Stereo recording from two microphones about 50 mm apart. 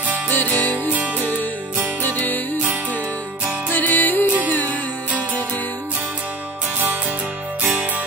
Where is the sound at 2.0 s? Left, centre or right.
Left.